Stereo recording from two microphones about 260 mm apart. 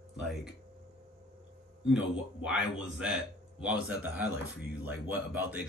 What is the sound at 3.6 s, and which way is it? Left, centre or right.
Speech, centre.